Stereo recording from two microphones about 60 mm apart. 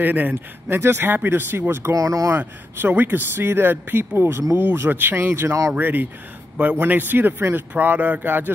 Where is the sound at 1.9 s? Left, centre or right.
Right.